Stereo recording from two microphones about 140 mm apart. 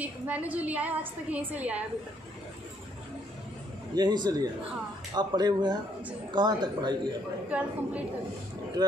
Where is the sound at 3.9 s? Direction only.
30° right (ahead or behind).